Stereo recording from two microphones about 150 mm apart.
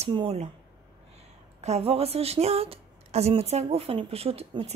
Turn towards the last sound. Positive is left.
turn(degrees=-40)  # may be behind; listen again after turning